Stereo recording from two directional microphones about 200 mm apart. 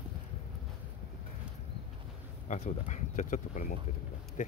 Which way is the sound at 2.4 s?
35° left (ahead or behind).